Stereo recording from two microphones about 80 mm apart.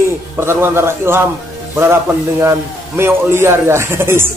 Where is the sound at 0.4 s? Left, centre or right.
Right.